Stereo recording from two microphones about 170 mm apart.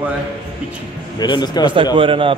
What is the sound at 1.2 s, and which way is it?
Speech, 25° left (ahead or behind).